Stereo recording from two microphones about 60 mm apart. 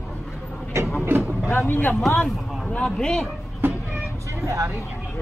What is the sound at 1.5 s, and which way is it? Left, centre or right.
Speech, left.